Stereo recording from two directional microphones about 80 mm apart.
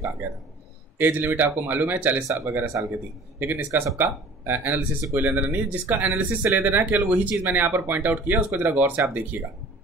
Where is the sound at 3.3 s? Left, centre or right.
Right.